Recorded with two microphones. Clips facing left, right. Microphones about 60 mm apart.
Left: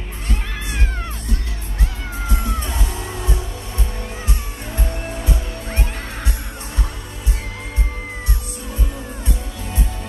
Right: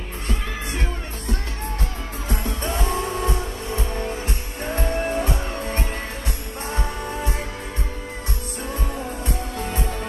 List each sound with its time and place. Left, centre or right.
2.2 s music: right
4.7 s music: right